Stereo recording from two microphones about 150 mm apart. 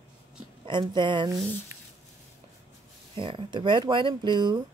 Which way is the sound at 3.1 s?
35° right (ahead or behind).